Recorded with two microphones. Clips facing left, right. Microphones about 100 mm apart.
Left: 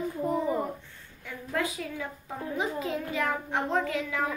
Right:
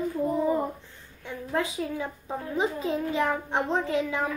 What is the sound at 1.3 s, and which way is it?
A child's voice, 25° right (ahead or behind).